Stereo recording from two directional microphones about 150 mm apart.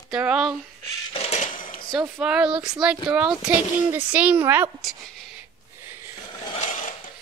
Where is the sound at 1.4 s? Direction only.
65° left (ahead or behind).